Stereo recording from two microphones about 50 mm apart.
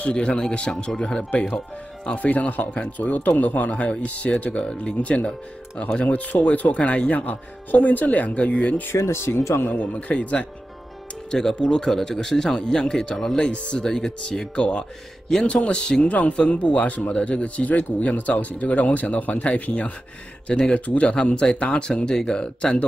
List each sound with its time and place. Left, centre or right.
0.0 s speech: centre
8.9 s speech: left
9.6 s speech: left
11.2 s speech: centre